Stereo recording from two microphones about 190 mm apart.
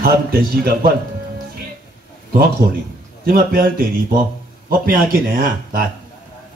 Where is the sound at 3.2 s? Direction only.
50° right (ahead or behind).